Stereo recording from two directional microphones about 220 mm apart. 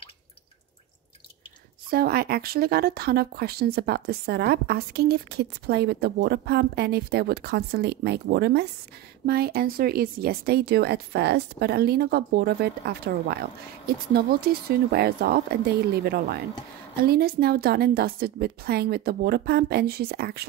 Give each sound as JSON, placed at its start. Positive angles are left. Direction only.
{"t": 1.9, "sound": "speech", "side_deg": -45}